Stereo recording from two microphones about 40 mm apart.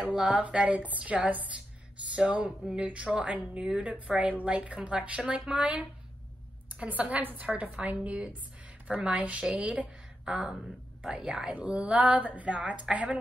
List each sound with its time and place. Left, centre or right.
0.1 s a woman's voice: right
6.9 s a woman's voice: right
7.4 s a woman's voice: right
10.2 s a woman's voice: centre
11.5 s a woman's voice: right